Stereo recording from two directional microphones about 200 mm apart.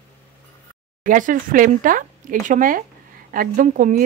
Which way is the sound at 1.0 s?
40° right (ahead or behind).